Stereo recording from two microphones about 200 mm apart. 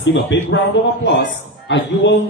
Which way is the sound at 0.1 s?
65° left (ahead or behind).